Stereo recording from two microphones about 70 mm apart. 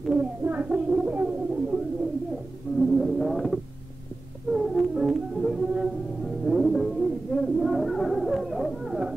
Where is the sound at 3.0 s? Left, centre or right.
Centre.